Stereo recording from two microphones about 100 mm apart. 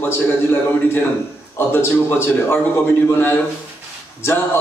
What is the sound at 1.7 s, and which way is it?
Speech, 25° left (ahead or behind).